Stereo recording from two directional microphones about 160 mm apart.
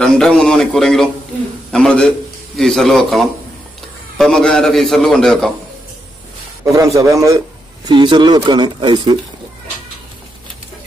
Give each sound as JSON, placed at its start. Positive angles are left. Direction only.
{"t": 0.0, "sound": "a man's voice", "side_deg": 5}
{"t": 6.6, "sound": "speech", "side_deg": -20}